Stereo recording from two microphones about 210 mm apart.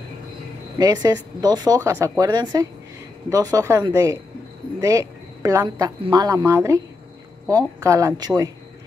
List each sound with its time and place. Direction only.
0.7 s speech: 15° right (ahead or behind)